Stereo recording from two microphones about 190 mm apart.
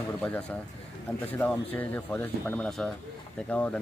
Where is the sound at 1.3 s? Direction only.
10° left (ahead or behind).